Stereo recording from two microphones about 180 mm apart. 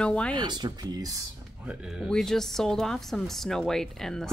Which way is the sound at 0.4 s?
25° right (ahead or behind).